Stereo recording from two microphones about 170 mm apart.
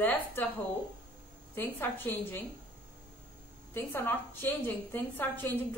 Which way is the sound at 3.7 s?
15° left (ahead or behind).